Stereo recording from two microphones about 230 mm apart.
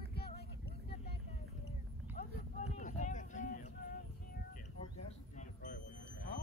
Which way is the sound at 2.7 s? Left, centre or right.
Left.